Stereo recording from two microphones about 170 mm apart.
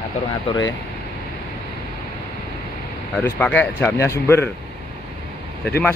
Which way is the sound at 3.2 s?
10° left (ahead or behind).